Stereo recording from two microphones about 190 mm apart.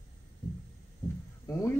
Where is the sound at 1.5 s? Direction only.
15° left (ahead or behind).